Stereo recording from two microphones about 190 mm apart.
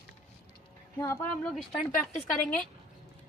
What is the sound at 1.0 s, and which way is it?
Speech, 15° left (ahead or behind).